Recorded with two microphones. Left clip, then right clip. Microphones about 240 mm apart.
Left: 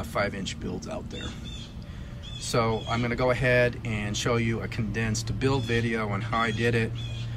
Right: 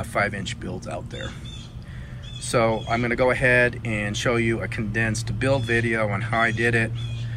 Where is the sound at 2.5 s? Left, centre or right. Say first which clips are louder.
Right 5 dB; centre.